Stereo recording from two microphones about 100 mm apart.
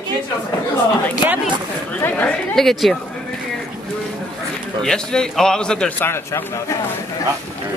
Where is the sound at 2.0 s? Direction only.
20° left (ahead or behind).